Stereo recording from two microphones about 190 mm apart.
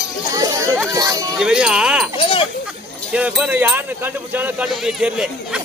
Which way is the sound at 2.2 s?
30° left (ahead or behind).